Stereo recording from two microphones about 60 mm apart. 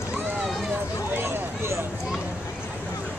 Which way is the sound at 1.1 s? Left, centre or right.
Right.